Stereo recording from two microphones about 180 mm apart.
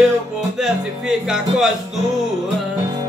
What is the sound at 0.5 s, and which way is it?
Speech, 5° right (ahead or behind).